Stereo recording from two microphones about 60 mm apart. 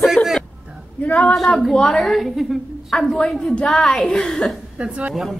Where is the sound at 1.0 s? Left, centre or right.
Left.